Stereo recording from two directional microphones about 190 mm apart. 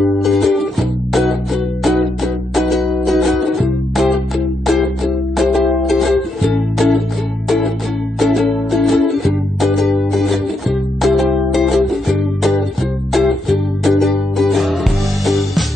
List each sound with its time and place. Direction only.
0.0 s music: centre (ahead or behind)
4.6 s music: centre (ahead or behind)
8.2 s music: centre (ahead or behind)
13.1 s music: centre (ahead or behind)